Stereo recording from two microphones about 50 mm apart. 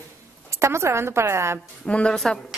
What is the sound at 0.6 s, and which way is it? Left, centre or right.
Speech, right.